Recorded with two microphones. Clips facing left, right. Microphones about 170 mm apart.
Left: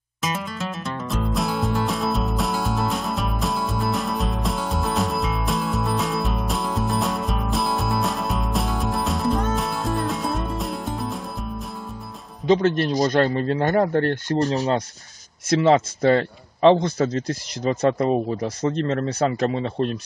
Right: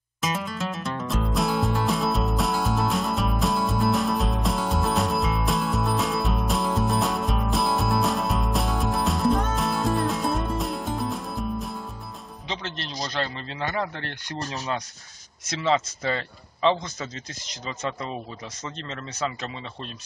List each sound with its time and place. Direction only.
0.2 s music: centre (ahead or behind)
12.4 s a man's voice: 50° left (ahead or behind)
14.5 s speech: 35° left (ahead or behind)
15.6 s a man's voice: 50° left (ahead or behind)